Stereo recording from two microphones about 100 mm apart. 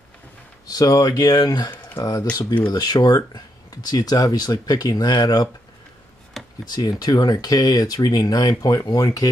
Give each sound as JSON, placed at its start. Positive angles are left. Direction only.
{"t": 0.7, "sound": "speech", "side_deg": 40}
{"t": 6.4, "sound": "a sound", "side_deg": 5}
{"t": 6.7, "sound": "speech", "side_deg": 40}